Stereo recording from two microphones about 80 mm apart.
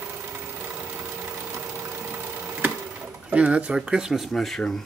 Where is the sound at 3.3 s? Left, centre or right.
Centre.